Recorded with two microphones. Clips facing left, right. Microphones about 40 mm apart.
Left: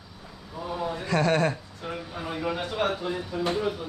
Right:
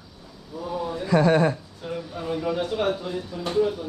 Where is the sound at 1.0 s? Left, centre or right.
Centre.